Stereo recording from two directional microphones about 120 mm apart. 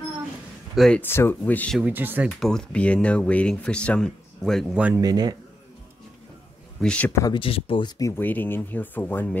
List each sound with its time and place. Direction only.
0.7 s speech: 5° left (ahead or behind)
1.0 s speech: 20° left (ahead or behind)
1.8 s speech: 15° right (ahead or behind)
2.2 s speech: 5° left (ahead or behind)
4.9 s speech: 35° right (ahead or behind)
6.8 s speech: 10° left (ahead or behind)
7.1 s speech: 25° left (ahead or behind)
7.3 s speech: 50° left (ahead or behind)
8.0 s speech: 15° left (ahead or behind)